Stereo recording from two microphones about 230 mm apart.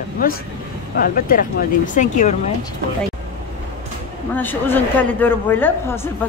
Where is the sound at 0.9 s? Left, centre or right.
Left.